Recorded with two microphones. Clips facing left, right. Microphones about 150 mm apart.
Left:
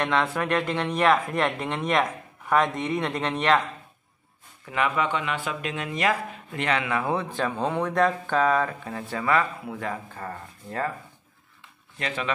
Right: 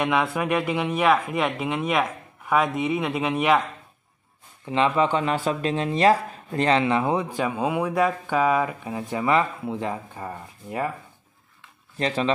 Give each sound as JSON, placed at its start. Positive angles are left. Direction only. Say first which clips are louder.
{"t": 0.0, "sound": "speech", "louder": "right 2 dB", "side_deg": -10}
{"t": 4.6, "sound": "speech", "louder": "right 5 dB", "side_deg": -25}
{"t": 12.0, "sound": "speech", "louder": "right 6 dB", "side_deg": -35}